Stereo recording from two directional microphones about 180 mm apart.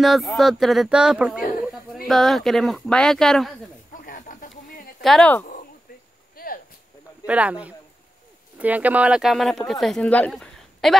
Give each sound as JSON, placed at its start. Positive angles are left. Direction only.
{"t": 0.0, "sound": "speech", "side_deg": 0}
{"t": 3.9, "sound": "snake", "side_deg": 50}
{"t": 5.0, "sound": "speech", "side_deg": 5}
{"t": 6.3, "sound": "a sound", "side_deg": 55}
{"t": 7.2, "sound": "speech", "side_deg": -5}